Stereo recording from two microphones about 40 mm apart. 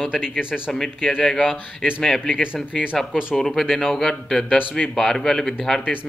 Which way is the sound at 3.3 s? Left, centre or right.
Centre.